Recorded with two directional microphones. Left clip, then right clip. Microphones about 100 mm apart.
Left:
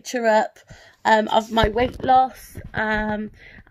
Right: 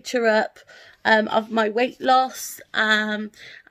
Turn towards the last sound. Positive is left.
turn(degrees=-50)  # may be behind; listen again after turning